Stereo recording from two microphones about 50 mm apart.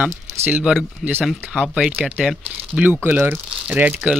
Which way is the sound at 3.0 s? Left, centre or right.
Right.